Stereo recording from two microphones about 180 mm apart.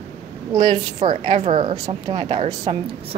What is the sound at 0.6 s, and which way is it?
A woman's voice, 40° right (ahead or behind).